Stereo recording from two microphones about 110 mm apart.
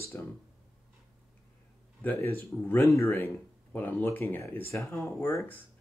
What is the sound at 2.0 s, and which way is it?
Speech, 20° left (ahead or behind).